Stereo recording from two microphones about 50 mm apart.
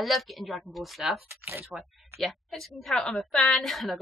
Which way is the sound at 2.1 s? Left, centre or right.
Centre.